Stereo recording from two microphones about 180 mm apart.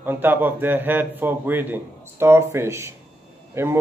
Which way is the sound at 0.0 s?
10° right (ahead or behind).